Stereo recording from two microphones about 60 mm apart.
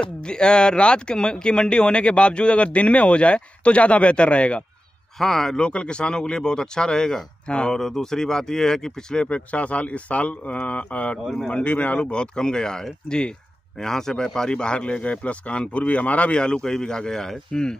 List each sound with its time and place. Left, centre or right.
0.0 s speech: centre
5.2 s speech: centre
5.6 s speech: centre